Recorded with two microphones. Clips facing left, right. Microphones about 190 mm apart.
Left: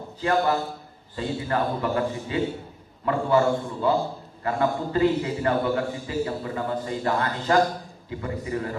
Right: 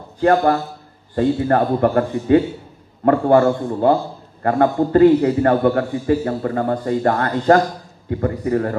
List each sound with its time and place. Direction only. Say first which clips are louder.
0.2 s a man's voice: right 8 dB; 55° right (ahead or behind)